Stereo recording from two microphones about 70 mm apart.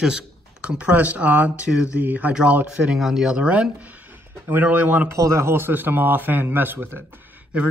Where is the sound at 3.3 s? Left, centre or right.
Centre.